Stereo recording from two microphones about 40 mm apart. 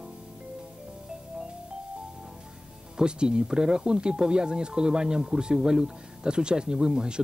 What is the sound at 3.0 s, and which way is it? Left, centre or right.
Speech, right.